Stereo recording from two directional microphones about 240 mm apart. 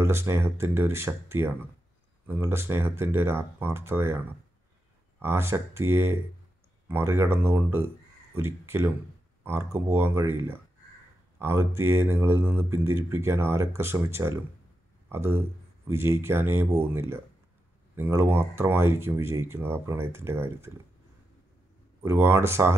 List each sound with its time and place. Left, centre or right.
0.0 s speech: centre
5.2 s speech: centre
22.0 s speech: centre